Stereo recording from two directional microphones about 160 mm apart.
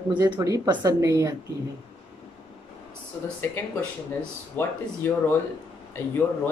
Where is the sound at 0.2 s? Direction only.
25° right (ahead or behind).